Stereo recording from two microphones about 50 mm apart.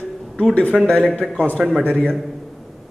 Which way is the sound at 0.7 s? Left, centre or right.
Centre.